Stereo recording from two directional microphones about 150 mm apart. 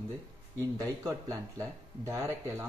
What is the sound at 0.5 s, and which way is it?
Speech, 20° right (ahead or behind).